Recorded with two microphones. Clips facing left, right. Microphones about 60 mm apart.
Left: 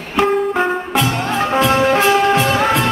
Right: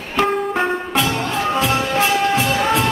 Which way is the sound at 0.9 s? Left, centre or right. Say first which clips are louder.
Left 3 dB; left.